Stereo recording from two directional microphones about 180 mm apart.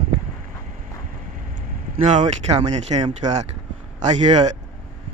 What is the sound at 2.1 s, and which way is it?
Speech, 40° right (ahead or behind).